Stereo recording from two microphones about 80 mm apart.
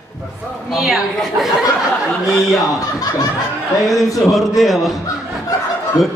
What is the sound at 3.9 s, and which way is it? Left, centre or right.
Speech, left.